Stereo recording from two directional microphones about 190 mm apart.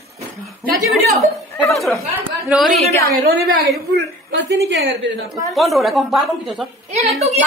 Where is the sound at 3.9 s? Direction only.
65° right (ahead or behind).